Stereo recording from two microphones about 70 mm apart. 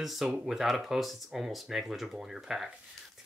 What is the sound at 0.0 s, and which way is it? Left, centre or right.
Speech, centre.